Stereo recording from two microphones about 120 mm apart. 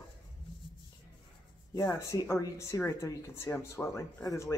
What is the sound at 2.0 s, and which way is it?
Speech, 25° left (ahead or behind).